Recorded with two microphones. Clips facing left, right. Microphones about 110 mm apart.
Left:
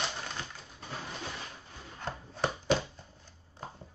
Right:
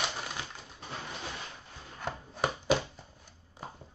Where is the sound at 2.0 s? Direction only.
10° right (ahead or behind).